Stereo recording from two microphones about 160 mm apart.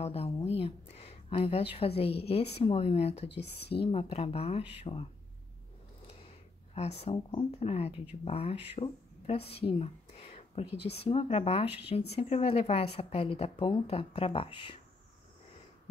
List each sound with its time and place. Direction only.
0.0 s a woman's voice: 40° left (ahead or behind)
6.7 s a woman's voice: 40° left (ahead or behind)